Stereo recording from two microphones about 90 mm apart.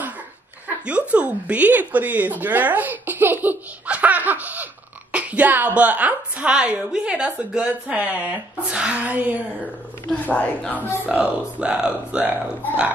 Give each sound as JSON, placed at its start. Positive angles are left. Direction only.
{"t": 0.8, "sound": "speech", "side_deg": -15}
{"t": 3.4, "sound": "laughter", "side_deg": -15}
{"t": 5.1, "sound": "a sound", "side_deg": -15}
{"t": 5.8, "sound": "a woman's voice", "side_deg": -15}
{"t": 10.2, "sound": "a woman's voice", "side_deg": 15}
{"t": 11.1, "sound": "a woman's voice", "side_deg": -5}